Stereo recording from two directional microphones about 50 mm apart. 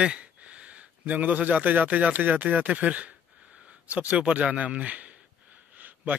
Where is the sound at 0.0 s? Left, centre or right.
Right.